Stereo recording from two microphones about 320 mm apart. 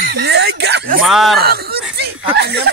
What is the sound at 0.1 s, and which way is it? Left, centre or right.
Speech, right.